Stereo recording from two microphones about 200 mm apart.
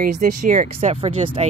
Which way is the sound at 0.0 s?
40° right (ahead or behind).